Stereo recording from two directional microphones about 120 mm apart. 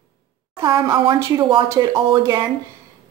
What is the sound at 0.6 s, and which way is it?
A woman's voice, 25° right (ahead or behind).